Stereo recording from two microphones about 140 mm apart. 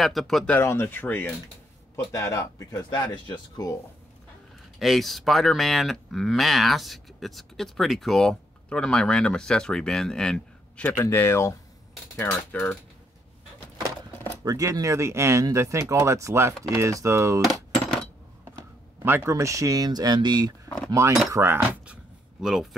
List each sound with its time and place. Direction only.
0.0 s speech: centre (ahead or behind)
0.6 s speech: 15° left (ahead or behind)
4.7 s speech: centre (ahead or behind)
11.0 s speech: 20° left (ahead or behind)
14.4 s speech: 25° right (ahead or behind)
19.0 s speech: 20° right (ahead or behind)
21.3 s speech: 15° right (ahead or behind)
22.4 s speech: centre (ahead or behind)